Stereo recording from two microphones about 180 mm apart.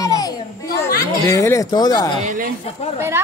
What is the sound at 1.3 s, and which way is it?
Speech, 15° left (ahead or behind).